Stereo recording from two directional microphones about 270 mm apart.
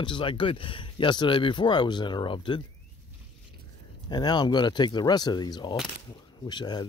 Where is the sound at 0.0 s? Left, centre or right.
Centre.